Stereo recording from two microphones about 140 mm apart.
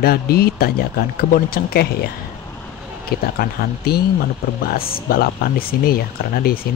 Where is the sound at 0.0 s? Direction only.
90° left.